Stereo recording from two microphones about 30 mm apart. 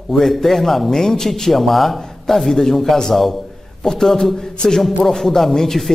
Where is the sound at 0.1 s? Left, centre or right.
Centre.